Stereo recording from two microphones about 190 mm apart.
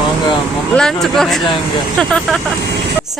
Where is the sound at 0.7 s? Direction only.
Centre (ahead or behind).